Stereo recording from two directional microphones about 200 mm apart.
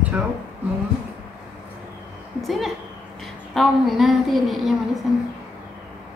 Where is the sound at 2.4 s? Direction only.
Centre (ahead or behind).